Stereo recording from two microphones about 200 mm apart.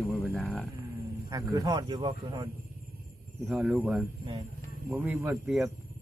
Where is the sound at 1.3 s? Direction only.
20° right (ahead or behind).